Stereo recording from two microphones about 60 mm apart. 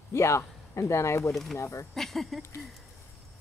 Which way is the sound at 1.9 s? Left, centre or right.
Centre.